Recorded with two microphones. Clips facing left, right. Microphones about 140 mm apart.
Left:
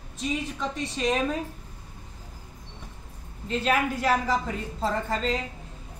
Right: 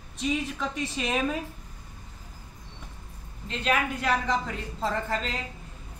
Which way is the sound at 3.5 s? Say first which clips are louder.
Left 2 dB; 5° left (ahead or behind).